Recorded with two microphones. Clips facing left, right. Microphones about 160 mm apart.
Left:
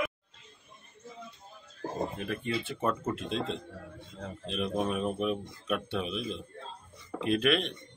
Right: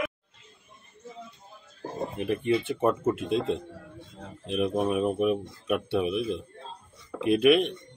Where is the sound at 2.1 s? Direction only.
20° right (ahead or behind).